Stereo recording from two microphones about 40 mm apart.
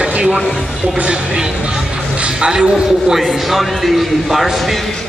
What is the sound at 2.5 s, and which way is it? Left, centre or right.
Speech, centre.